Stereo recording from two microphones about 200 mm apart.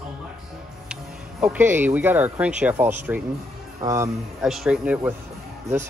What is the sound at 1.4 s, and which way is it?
Speech, 10° right (ahead or behind).